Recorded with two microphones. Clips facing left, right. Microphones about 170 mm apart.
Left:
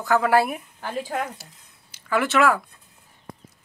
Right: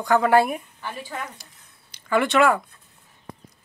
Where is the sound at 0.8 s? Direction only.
45° left (ahead or behind).